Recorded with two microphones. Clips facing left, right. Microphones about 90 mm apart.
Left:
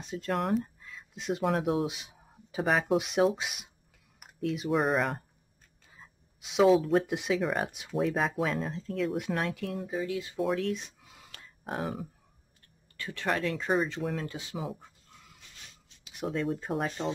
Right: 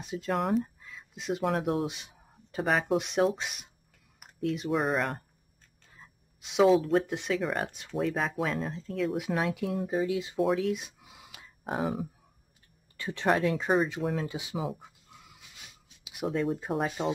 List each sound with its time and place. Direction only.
0.0 s speech: 5° right (ahead or behind)
10.3 s a sound: centre (ahead or behind)
12.9 s speech: 20° right (ahead or behind)
13.3 s speech: 5° right (ahead or behind)
16.0 s speech: 5° right (ahead or behind)